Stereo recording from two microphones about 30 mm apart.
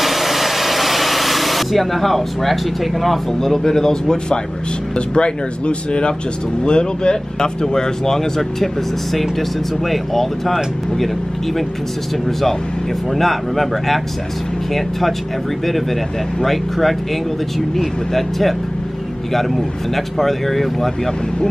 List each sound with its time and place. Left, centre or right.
0.0 s speech: centre; by 4.4 s left
4.9 s speech: left; by 11.1 s centre
12.3 s speech: centre
20.2 s speech: centre